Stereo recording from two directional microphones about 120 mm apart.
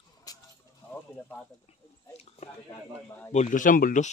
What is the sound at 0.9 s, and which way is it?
Speech, 15° left (ahead or behind).